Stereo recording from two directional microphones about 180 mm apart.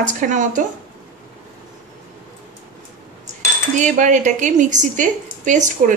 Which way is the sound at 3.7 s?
45° right (ahead or behind).